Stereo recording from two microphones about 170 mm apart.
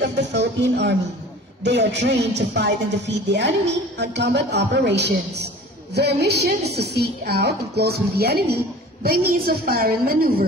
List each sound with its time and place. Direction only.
0.0 s a woman's voice: 90° right; by 10.3 s 60° right (ahead or behind)